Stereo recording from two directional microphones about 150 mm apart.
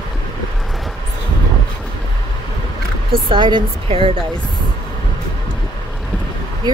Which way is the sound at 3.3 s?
30° right (ahead or behind).